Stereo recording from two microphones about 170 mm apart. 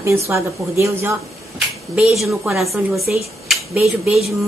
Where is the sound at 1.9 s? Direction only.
Centre (ahead or behind).